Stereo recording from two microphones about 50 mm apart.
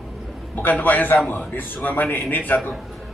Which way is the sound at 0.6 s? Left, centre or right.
Left.